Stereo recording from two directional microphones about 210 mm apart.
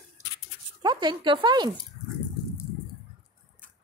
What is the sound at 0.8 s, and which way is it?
Speech, 20° right (ahead or behind).